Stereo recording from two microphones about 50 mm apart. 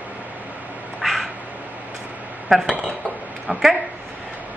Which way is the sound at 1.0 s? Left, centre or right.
Centre.